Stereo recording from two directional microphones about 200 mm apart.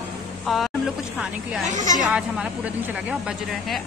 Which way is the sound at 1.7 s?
40° right (ahead or behind).